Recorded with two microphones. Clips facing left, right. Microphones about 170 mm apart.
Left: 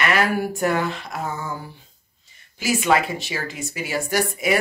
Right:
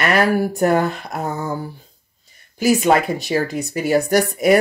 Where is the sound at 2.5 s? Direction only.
40° right (ahead or behind).